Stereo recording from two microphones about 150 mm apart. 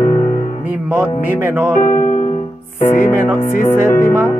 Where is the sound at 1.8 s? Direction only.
65° left (ahead or behind).